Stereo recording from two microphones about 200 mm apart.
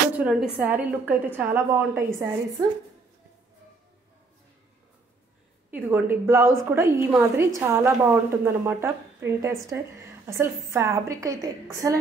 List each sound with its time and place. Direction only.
0.1 s a woman's voice: 5° right (ahead or behind)
5.7 s a woman's voice: 10° right (ahead or behind)